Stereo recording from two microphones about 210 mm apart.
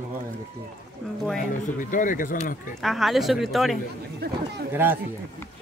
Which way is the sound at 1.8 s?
40° left (ahead or behind).